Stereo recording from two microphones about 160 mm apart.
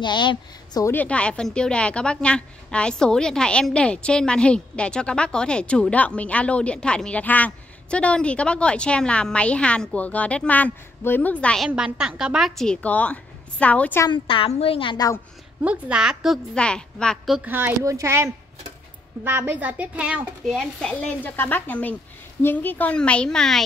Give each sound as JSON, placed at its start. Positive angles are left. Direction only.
{"t": 0.0, "sound": "a woman's voice", "side_deg": 30}
{"t": 0.8, "sound": "a woman's voice", "side_deg": 10}
{"t": 14.0, "sound": "a woman's voice", "side_deg": 30}
{"t": 15.6, "sound": "a woman's voice", "side_deg": -5}
{"t": 17.5, "sound": "a woman's voice", "side_deg": -10}